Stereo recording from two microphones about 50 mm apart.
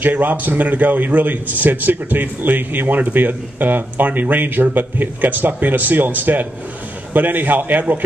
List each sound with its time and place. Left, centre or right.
0.0 s a man's voice: right